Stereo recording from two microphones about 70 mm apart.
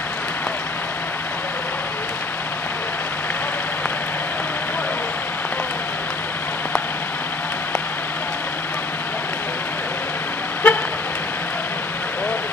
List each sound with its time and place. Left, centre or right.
10.6 s vehicle: left